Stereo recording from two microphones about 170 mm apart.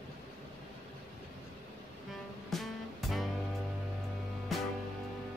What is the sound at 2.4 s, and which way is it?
Music, centre (ahead or behind).